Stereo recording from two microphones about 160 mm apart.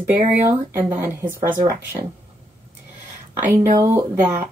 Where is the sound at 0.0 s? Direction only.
15° right (ahead or behind).